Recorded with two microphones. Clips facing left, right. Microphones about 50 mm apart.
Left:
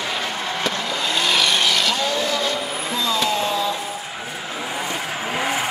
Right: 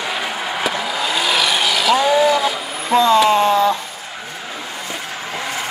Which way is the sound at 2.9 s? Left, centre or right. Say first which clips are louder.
Right 12 dB; right.